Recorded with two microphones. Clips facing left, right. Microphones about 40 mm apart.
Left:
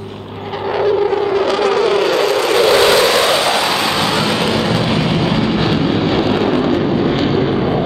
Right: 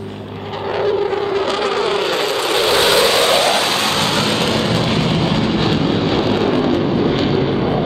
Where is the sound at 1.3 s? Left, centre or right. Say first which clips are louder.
Left 4 dB; centre.